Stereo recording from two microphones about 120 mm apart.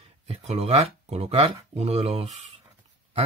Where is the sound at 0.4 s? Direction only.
70° right (ahead or behind).